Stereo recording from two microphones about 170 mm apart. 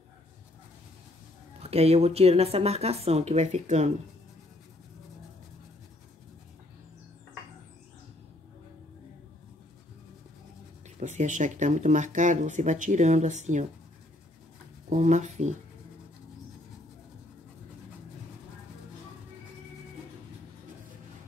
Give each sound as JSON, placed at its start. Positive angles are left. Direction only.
{"t": 1.6, "sound": "speech", "side_deg": -35}
{"t": 11.0, "sound": "speech", "side_deg": -45}
{"t": 14.9, "sound": "speech", "side_deg": -45}